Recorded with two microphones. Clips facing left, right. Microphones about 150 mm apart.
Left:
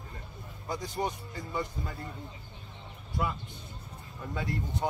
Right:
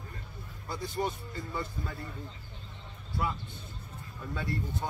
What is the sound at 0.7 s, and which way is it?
Speech, 20° left (ahead or behind).